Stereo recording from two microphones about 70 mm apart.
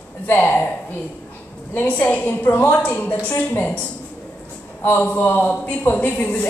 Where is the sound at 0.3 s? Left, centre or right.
Left.